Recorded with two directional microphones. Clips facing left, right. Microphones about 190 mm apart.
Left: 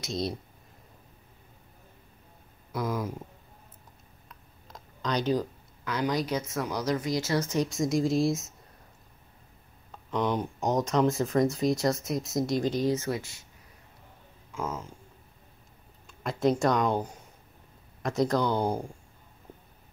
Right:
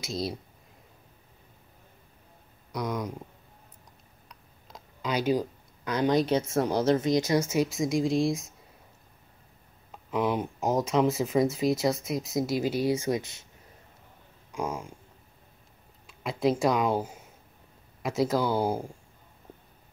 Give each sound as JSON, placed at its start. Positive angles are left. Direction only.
{"t": 0.0, "sound": "speech", "side_deg": 0}
{"t": 2.7, "sound": "speech", "side_deg": 5}
{"t": 4.3, "sound": "a sound", "side_deg": 0}
{"t": 5.9, "sound": "speech", "side_deg": -25}
{"t": 9.8, "sound": "speech", "side_deg": -5}
{"t": 14.5, "sound": "speech", "side_deg": -15}
{"t": 16.1, "sound": "speech", "side_deg": 0}